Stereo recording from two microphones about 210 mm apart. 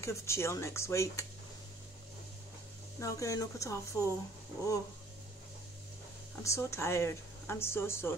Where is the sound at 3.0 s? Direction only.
15° left (ahead or behind).